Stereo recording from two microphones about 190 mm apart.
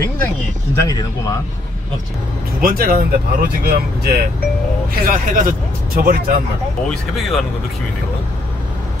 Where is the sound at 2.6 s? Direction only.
50° right (ahead or behind).